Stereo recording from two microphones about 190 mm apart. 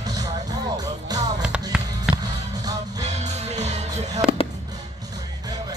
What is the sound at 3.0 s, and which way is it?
Music, 35° right (ahead or behind).